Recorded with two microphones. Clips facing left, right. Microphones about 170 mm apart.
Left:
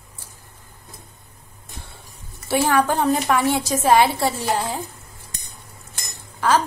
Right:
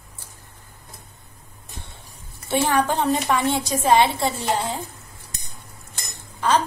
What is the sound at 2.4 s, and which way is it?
A woman's voice, 5° left (ahead or behind).